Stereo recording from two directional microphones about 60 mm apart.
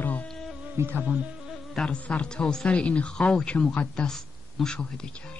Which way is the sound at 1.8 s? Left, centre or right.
Centre.